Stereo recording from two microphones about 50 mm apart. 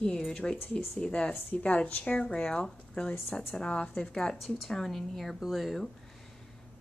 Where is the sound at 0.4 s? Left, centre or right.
Centre.